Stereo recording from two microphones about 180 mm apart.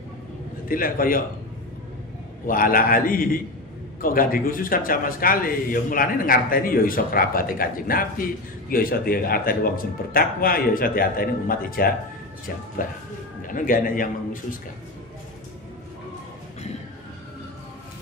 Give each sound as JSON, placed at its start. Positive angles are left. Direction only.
{"t": 0.7, "sound": "a man's voice", "side_deg": 50}
{"t": 2.4, "sound": "a man's voice", "side_deg": 50}